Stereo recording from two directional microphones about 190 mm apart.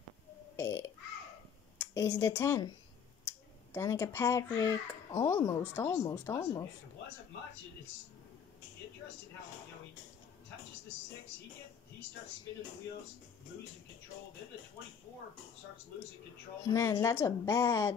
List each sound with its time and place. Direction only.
0.6 s a child's voice: 15° left (ahead or behind)
16.6 s a child's voice: 20° left (ahead or behind)